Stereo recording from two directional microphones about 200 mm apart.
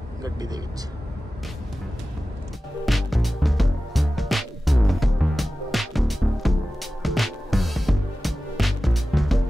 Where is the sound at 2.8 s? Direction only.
Centre (ahead or behind).